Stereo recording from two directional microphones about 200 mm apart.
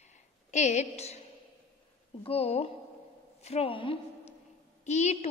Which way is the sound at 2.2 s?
30° left (ahead or behind).